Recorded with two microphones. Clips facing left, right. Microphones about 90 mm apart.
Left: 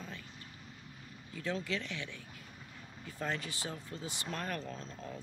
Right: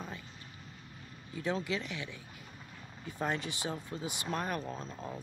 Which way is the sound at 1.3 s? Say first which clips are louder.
Right 3 dB; 20° right (ahead or behind).